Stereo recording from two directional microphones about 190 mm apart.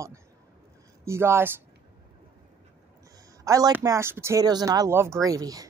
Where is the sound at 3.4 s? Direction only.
15° right (ahead or behind).